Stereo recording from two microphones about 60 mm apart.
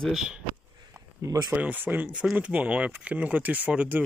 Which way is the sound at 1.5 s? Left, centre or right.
Right.